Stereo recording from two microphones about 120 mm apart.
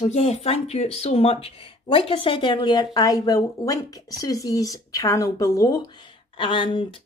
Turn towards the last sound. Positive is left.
turn(degrees=45)  # may be behind; listen again after turning